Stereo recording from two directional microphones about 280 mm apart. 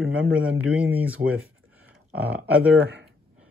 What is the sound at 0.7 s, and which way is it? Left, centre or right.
Speech, centre.